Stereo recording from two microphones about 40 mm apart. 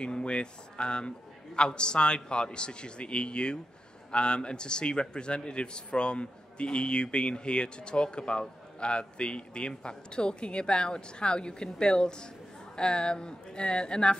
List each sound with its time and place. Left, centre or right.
0.0 s a man's voice: left